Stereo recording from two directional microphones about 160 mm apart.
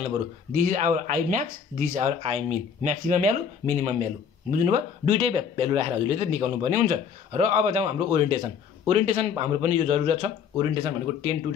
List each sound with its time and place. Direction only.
0.6 s speech: 55° right (ahead or behind); by 11.3 s 35° right (ahead or behind)